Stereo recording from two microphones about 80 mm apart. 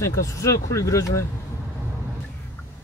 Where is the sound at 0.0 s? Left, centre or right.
Left.